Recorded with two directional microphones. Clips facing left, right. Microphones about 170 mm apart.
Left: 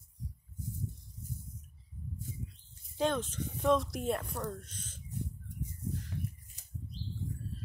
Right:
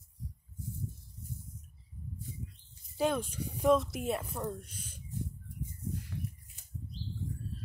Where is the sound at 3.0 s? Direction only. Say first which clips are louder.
Right 1 dB; 10° right (ahead or behind).